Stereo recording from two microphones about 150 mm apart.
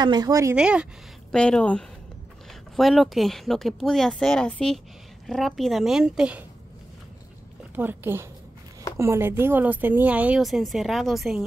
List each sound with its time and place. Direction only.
0.0 s speech: 30° right (ahead or behind)
0.6 s speech: 5° right (ahead or behind)
1.3 s speech: 5° left (ahead or behind)
7.7 s speech: 15° right (ahead or behind)